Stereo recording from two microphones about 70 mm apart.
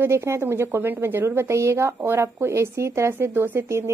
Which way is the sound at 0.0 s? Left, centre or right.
Right.